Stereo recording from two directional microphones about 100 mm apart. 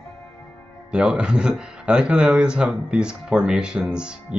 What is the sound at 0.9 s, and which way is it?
Speech, 10° right (ahead or behind).